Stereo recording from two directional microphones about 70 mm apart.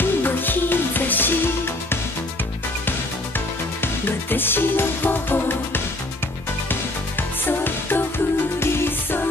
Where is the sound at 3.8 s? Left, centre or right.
Left.